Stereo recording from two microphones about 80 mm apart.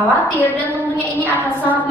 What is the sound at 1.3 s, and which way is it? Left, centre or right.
Speech, left.